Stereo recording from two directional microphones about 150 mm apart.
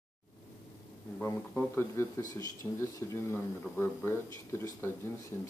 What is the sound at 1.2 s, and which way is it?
Speech, 15° left (ahead or behind).